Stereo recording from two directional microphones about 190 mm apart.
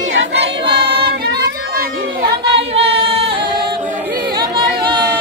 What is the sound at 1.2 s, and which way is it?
Chatter, 55° right (ahead or behind).